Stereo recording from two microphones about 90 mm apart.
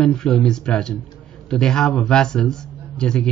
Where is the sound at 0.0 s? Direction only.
5° left (ahead or behind).